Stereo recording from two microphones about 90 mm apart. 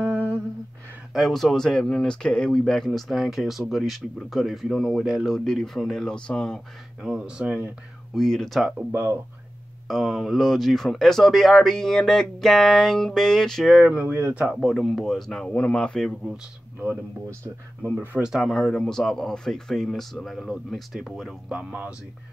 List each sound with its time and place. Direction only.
1.1 s speech: centre (ahead or behind)
7.0 s speech: 10° right (ahead or behind)
8.1 s speech: 5° left (ahead or behind)
8.7 s speech: 25° right (ahead or behind)
9.8 s speech: centre (ahead or behind)
13.7 s speech: 10° right (ahead or behind)
14.0 s speech: 25° right (ahead or behind)
14.4 s speech: centre (ahead or behind)
17.8 s speech: 20° right (ahead or behind)
18.3 s speech: centre (ahead or behind)
21.5 s speech: 15° right (ahead or behind)